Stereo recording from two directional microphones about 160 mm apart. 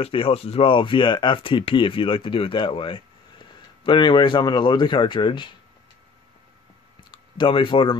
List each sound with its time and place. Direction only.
0.0 s speech: 35° left (ahead or behind)
7.1 s speech: 30° left (ahead or behind)